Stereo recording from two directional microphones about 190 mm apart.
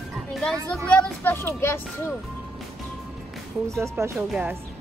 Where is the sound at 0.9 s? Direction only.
5° left (ahead or behind).